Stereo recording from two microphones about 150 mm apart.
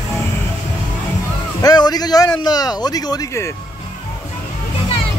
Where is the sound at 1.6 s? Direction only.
25° left (ahead or behind).